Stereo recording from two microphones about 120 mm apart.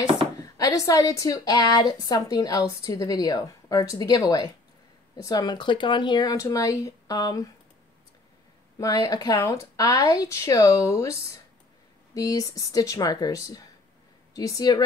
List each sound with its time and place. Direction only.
0.4 s a woman's voice: 30° left (ahead or behind)
8.7 s speech: 30° left (ahead or behind)